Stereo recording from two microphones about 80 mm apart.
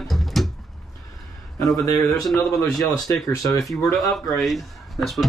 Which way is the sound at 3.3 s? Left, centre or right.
Left.